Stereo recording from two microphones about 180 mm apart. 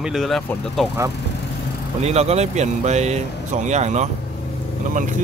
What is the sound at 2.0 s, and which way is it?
Speech, 35° right (ahead or behind).